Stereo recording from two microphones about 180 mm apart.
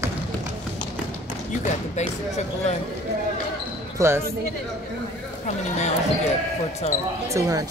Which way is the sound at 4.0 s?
15° right (ahead or behind).